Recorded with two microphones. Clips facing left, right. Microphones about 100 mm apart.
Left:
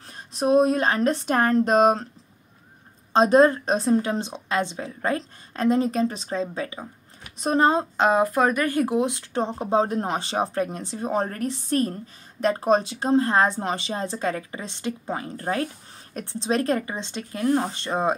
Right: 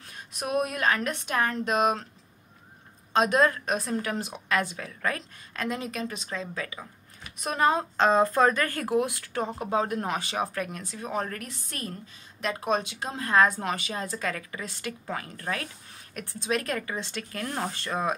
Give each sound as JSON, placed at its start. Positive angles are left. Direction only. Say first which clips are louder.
{"t": 0.1, "sound": "a woman's voice", "louder": "left 9 dB", "side_deg": 30}
{"t": 3.1, "sound": "a woman's voice", "louder": "left 6 dB", "side_deg": 35}
{"t": 8.0, "sound": "speech", "louder": "left 1 dB", "side_deg": 10}